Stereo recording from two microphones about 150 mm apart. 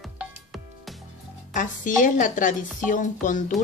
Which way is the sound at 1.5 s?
60° left (ahead or behind).